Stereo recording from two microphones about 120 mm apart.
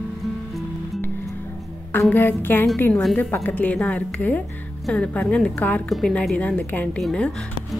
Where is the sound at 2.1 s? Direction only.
15° left (ahead or behind).